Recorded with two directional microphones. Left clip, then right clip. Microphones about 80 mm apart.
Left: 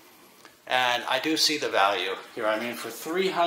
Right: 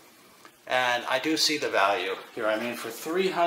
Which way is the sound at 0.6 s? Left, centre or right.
Centre.